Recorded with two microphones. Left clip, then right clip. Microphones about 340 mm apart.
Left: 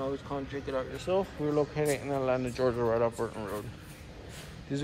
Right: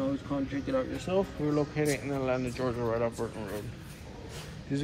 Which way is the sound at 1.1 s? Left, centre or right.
Centre.